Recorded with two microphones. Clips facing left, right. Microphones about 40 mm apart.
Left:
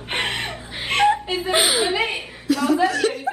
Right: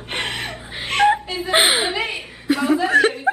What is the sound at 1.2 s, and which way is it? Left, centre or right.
Chuckle, centre.